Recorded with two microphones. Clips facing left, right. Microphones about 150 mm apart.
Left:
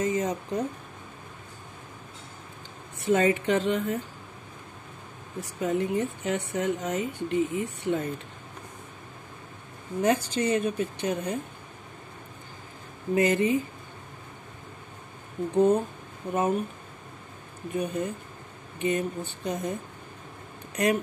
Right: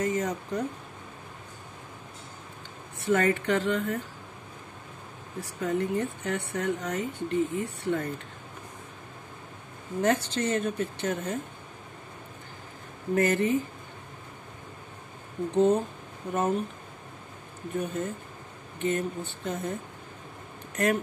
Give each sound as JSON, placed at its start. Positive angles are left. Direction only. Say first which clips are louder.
{"t": 0.0, "sound": "speech", "louder": "left 1 dB", "side_deg": 20}
{"t": 3.1, "sound": "speech", "louder": "left 2 dB", "side_deg": 20}
{"t": 5.4, "sound": "speech", "louder": "left 1 dB", "side_deg": 20}
{"t": 10.0, "sound": "a woman's voice", "louder": "left 2 dB", "side_deg": 10}
{"t": 13.1, "sound": "a woman's voice", "louder": "left 1 dB", "side_deg": 20}
{"t": 15.5, "sound": "a woman's voice", "louder": "left 1 dB", "side_deg": 10}
{"t": 17.7, "sound": "a woman's voice", "louder": "left 2 dB", "side_deg": 15}
{"t": 20.7, "sound": "speech", "louder": "left 1 dB", "side_deg": 15}